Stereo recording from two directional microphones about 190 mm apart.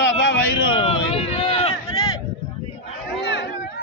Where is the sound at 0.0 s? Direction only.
75° left (ahead or behind).